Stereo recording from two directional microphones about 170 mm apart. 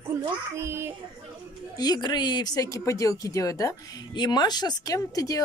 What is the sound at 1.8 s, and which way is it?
Speech, 25° left (ahead or behind).